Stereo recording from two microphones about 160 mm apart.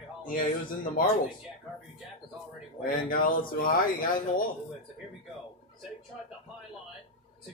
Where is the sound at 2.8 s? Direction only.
60° left (ahead or behind).